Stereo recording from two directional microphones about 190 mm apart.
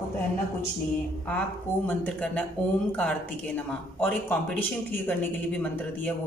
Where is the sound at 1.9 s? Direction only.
5° left (ahead or behind).